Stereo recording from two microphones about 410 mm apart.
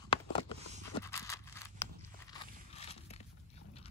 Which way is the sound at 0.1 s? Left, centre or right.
Centre.